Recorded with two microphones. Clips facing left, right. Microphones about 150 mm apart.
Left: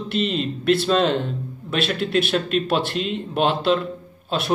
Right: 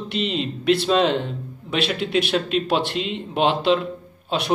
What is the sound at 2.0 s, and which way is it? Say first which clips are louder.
Speech: left 1 dB; 50° left (ahead or behind).